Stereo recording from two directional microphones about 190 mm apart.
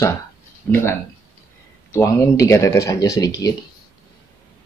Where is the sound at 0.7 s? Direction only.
5° left (ahead or behind).